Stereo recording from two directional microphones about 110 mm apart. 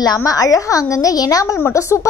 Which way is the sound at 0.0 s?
35° left (ahead or behind).